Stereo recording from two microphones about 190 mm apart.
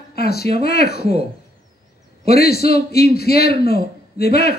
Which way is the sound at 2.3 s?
55° left (ahead or behind).